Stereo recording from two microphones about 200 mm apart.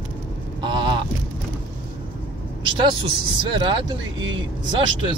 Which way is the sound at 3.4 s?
25° right (ahead or behind).